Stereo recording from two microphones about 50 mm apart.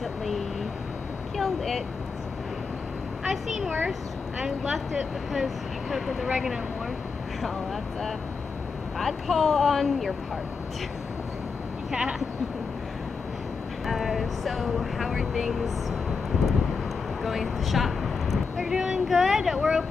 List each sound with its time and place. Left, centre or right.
1.3 s vehicle: centre
4.4 s speech: centre
8.9 s speech: centre
11.9 s speech: centre
13.8 s speech: centre
17.2 s vehicle: centre
18.6 s speech: centre